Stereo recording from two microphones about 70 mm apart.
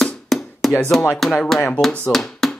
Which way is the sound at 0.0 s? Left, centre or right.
Centre.